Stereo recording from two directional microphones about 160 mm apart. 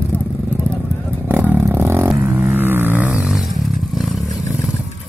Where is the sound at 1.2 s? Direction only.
10° right (ahead or behind).